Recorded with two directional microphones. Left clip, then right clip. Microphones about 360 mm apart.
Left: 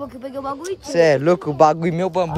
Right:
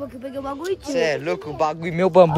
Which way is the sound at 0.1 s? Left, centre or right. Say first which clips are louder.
Left 2 dB; centre.